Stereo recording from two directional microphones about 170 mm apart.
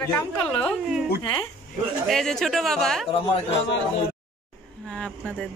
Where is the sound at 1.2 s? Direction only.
25° left (ahead or behind).